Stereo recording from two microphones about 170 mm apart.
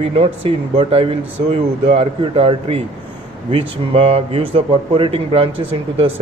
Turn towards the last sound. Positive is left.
turn(degrees=-35)  # may be behind; listen again after turning